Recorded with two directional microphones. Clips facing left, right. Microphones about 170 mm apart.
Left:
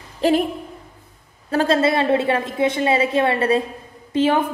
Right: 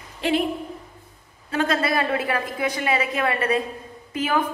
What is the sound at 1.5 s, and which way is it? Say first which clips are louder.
A woman's voice: left 5 dB; 30° left (ahead or behind).